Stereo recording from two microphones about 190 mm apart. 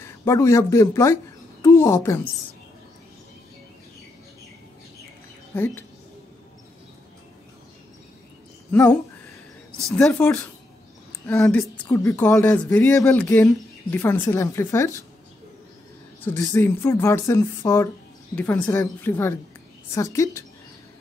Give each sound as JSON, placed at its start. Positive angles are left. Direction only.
{"t": 0.0, "sound": "speech", "side_deg": 15}
{"t": 5.5, "sound": "speech", "side_deg": 10}
{"t": 8.7, "sound": "speech", "side_deg": 5}
{"t": 9.9, "sound": "speech", "side_deg": 5}
{"t": 12.0, "sound": "speech", "side_deg": 15}
{"t": 16.2, "sound": "speech", "side_deg": 15}